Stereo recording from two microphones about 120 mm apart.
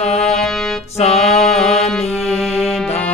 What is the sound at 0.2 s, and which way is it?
Music, 5° left (ahead or behind).